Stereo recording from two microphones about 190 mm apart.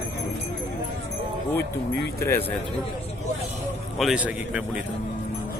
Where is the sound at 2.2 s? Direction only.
10° left (ahead or behind).